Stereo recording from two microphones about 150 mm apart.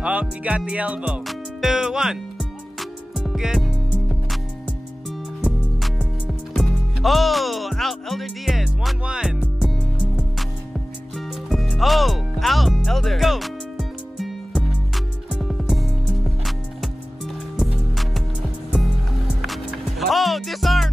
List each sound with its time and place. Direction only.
0.0 s music: 10° right (ahead or behind)
6.2 s music: centre (ahead or behind)
11.1 s music: centre (ahead or behind)
19.4 s music: centre (ahead or behind)